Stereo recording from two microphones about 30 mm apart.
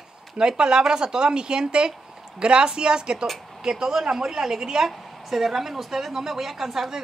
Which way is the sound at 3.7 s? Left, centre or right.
Centre.